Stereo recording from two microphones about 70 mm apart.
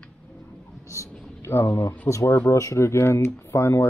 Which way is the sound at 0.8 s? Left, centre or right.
Left.